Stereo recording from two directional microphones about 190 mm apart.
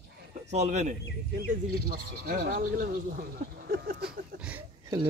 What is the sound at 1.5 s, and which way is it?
Speech, 50° right (ahead or behind).